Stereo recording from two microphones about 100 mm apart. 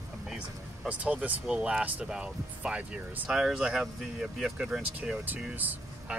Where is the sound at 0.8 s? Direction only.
15° right (ahead or behind).